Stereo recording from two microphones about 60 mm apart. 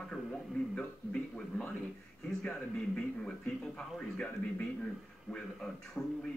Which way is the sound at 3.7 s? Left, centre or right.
Centre.